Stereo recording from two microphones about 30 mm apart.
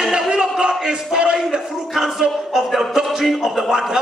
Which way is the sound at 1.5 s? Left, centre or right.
Centre.